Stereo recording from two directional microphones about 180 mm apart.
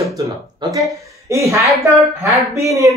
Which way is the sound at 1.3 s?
15° right (ahead or behind).